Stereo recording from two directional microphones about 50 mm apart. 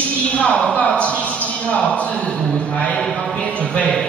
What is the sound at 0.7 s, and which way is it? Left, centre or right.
A man's voice, left.